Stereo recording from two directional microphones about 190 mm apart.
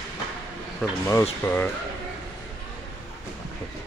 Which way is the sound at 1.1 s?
15° left (ahead or behind).